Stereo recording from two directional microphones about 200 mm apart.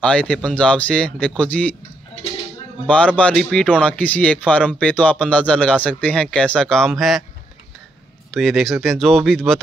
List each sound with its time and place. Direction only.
0.0 s speech: 5° left (ahead or behind)
2.9 s speech: 5° left (ahead or behind)
8.3 s speech: centre (ahead or behind)